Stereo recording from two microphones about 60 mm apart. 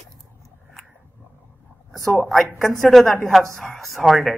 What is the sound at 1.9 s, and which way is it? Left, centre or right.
A woman's voice, centre.